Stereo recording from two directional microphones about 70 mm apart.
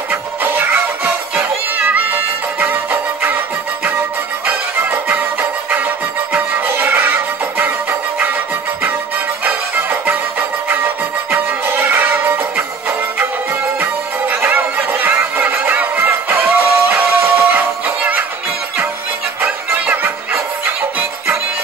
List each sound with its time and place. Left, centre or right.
0.1 s music: right
9.4 s music: right
13.7 s music: right
19.4 s music: right